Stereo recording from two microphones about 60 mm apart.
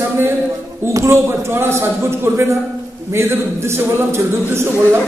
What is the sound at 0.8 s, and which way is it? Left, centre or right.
Speech, right.